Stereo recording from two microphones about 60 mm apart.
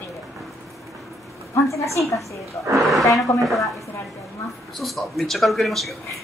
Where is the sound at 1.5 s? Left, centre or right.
Left.